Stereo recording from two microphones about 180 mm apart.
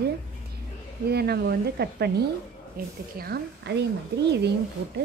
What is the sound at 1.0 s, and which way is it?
A woman's voice, 60° right (ahead or behind).